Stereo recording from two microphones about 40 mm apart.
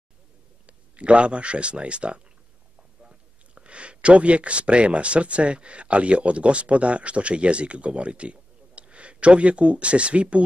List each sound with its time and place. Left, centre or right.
0.7 s speech: right